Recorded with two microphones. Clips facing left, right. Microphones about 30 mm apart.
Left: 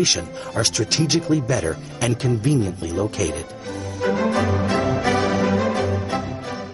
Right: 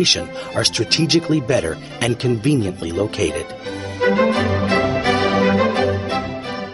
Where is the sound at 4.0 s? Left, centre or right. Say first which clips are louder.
Right 4 dB; right.